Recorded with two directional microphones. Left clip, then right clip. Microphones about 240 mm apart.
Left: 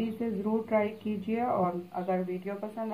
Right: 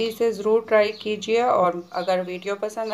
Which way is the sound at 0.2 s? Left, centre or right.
Right.